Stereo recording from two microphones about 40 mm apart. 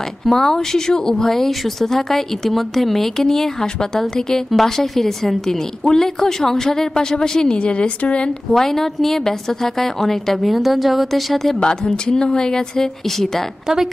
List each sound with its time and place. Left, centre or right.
0.3 s speech: centre
4.5 s speech: centre; by 8.3 s left
8.5 s speech: centre
10.5 s speech: centre
11.6 s speech: left